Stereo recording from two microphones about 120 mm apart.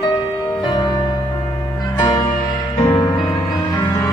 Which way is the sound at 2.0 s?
35° left (ahead or behind).